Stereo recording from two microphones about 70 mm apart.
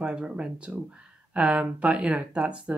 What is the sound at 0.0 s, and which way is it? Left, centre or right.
Speech, centre.